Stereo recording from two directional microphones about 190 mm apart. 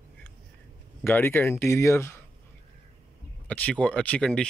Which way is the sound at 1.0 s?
10° left (ahead or behind).